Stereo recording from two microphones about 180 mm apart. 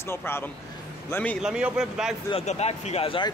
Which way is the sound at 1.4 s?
5° right (ahead or behind).